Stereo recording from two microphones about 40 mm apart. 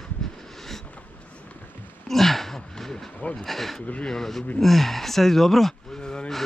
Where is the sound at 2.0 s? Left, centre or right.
Centre.